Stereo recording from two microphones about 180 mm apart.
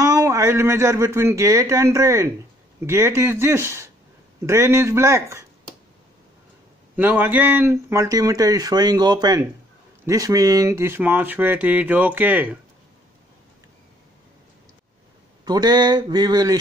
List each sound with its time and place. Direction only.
0.0 s speech: 15° right (ahead or behind)
7.0 s speech: 10° right (ahead or behind)
15.4 s speech: 20° right (ahead or behind)